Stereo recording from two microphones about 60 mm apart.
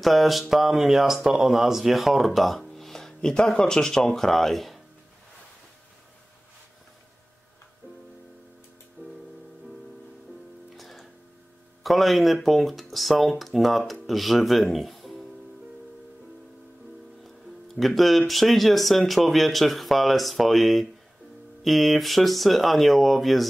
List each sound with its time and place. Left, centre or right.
0.0 s speech: centre
9.0 s music: right
10.8 s music: centre
11.8 s speech: centre
17.7 s speech: centre